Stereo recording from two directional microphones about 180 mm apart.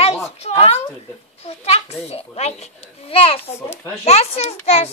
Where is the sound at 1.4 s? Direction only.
35° left (ahead or behind).